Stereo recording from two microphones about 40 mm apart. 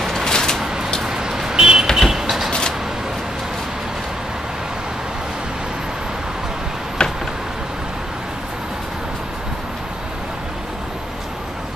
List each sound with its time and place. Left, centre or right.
0.0 s vehicle: centre
1.0 s vehicle: centre
2.0 s vehicle: centre
7.0 s a sound: centre